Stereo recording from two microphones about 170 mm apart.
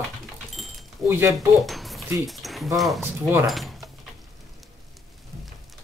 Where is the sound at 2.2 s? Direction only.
Centre (ahead or behind).